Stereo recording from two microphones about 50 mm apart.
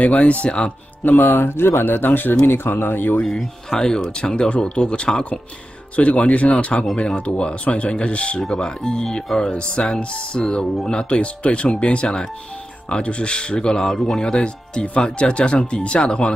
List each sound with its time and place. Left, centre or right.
0.0 s speech: left
1.0 s speech: left
3.3 s speech: centre; by 8.5 s left
8.5 s speech: centre